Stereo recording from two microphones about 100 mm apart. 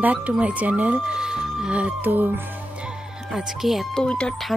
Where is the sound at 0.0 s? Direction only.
15° right (ahead or behind).